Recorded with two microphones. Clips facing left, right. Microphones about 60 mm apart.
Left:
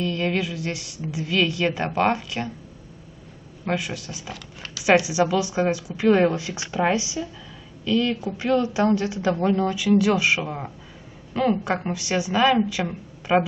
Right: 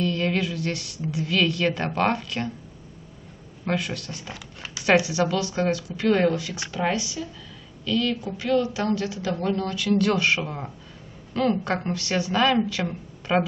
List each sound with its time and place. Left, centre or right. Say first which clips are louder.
0.0 s a woman's voice: even; centre
3.6 s a woman's voice: even; centre